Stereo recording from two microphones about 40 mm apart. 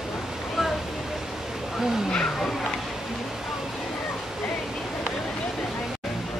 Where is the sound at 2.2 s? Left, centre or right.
Centre.